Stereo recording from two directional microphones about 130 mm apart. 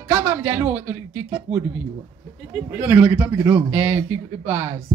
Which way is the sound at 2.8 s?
10° right (ahead or behind).